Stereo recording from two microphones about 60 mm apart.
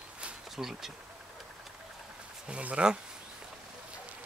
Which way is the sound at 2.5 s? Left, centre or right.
Right.